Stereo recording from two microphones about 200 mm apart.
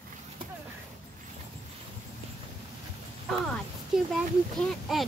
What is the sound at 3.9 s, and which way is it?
A woman's voice, 5° right (ahead or behind).